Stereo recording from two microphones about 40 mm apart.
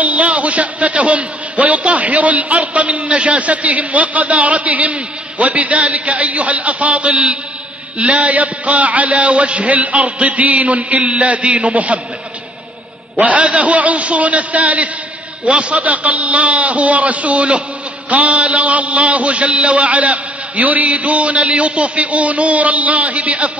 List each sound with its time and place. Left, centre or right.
0.0 s a man's voice: right
13.2 s a man's voice: right